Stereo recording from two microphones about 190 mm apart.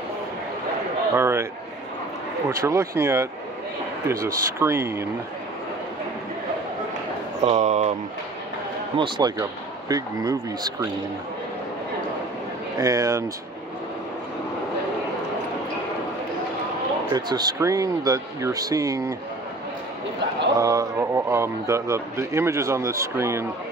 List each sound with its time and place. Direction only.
1.1 s speech: 15° right (ahead or behind)
2.6 s speech: 15° right (ahead or behind)
7.4 s speech: 40° right (ahead or behind)
8.9 s speech: 25° right (ahead or behind)
12.7 s speech: 20° right (ahead or behind)
17.1 s speech: 20° right (ahead or behind)
20.5 s speech: 20° right (ahead or behind)